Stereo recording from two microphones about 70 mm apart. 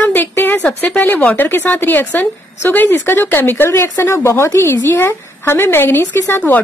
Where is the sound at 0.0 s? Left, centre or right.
Left.